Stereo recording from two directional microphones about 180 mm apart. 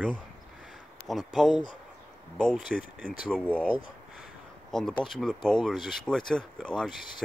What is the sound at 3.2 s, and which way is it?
Speech, 5° left (ahead or behind).